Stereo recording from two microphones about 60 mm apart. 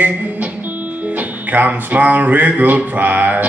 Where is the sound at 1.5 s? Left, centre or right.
Right.